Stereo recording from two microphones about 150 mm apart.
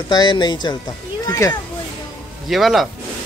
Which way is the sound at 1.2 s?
20° left (ahead or behind).